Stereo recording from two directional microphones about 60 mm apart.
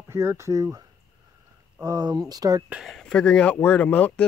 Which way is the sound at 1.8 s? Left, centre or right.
Right.